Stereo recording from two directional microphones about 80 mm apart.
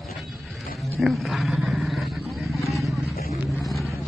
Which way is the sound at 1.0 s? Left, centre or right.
Centre.